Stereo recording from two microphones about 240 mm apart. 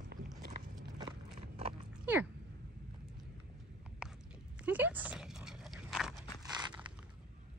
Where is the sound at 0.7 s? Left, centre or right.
Centre.